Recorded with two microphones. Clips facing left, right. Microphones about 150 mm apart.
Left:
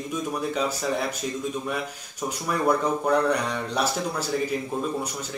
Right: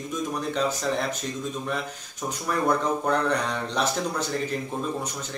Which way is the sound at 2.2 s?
5° left (ahead or behind).